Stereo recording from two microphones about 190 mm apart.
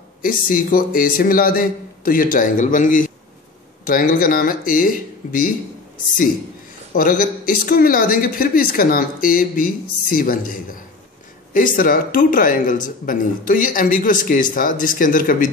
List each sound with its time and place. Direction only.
0.2 s speech: 45° left (ahead or behind)
6.9 s speech: 45° left (ahead or behind)